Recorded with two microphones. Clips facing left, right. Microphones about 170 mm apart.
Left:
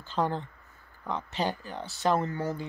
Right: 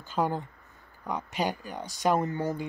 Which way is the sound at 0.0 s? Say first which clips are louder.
Right 1 dB; 10° right (ahead or behind).